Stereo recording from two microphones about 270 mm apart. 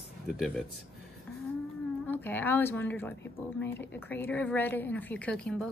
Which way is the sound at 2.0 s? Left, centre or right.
Centre.